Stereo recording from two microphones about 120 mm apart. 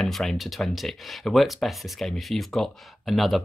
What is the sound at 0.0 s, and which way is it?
Speech, centre (ahead or behind).